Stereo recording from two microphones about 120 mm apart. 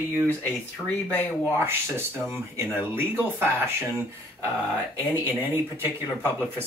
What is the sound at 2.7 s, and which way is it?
Speech, 15° right (ahead or behind).